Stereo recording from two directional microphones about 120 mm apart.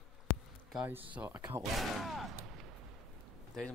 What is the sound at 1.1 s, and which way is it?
Speech, 15° right (ahead or behind).